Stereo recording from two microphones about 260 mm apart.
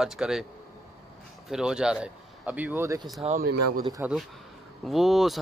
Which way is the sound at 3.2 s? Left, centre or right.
Right.